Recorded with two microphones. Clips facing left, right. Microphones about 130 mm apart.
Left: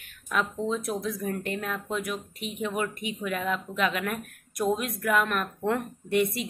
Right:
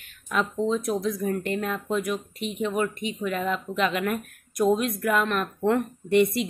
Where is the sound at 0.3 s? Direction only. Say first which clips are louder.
Right 3 dB; centre (ahead or behind).